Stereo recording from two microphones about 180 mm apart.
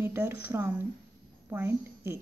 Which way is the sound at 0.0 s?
15° right (ahead or behind).